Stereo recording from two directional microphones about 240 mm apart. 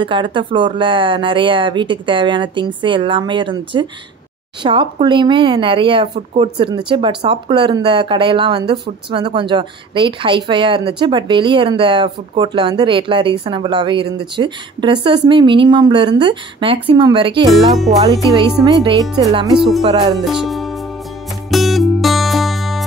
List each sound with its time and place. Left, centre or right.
0.0 s speech: right
18.6 s speech: centre
20.2 s music: centre